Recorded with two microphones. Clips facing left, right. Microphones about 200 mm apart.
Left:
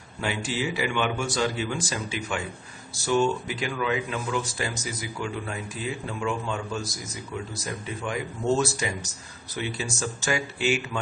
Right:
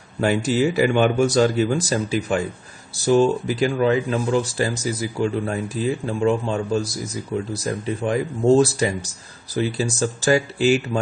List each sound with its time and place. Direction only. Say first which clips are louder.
0.2 s speech: right 10 dB; 45° right (ahead or behind)